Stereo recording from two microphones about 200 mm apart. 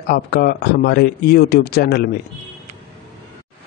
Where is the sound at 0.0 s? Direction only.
50° left (ahead or behind).